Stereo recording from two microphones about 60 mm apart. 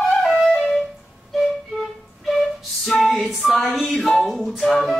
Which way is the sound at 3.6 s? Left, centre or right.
Centre.